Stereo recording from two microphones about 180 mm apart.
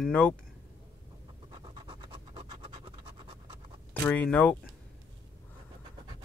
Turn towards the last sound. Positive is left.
turn(degrees=10)  # may be behind; listen again after turning